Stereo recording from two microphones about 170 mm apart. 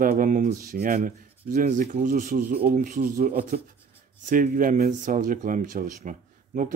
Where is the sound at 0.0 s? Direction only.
55° right (ahead or behind).